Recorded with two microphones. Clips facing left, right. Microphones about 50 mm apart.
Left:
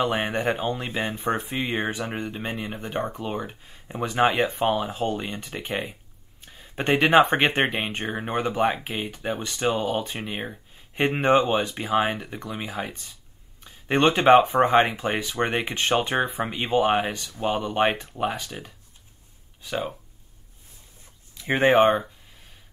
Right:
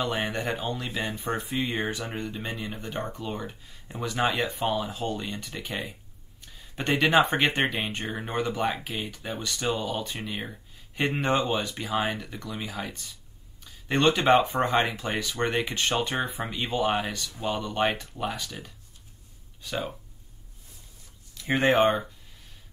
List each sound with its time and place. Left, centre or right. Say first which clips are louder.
0.0 s speech: left 5 dB; centre
6.4 s a sound: left 4 dB; left
7.3 s speech: left 3 dB; left
21.4 s speech: left 4 dB; centre